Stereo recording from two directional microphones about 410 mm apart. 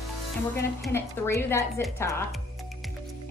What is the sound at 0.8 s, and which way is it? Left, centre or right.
Speech, centre.